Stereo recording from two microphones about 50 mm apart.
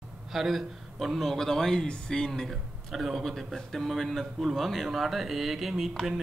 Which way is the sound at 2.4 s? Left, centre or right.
Centre.